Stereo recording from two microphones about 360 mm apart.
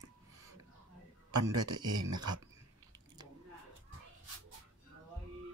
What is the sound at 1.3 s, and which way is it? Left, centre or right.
A man's voice, right.